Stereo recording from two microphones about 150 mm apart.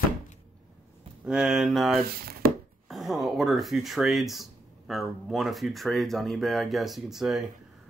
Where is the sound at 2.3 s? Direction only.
85° right.